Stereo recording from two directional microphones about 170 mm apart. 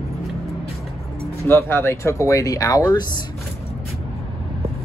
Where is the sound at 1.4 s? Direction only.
15° left (ahead or behind).